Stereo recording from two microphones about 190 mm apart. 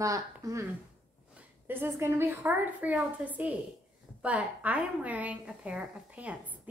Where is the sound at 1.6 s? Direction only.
10° right (ahead or behind).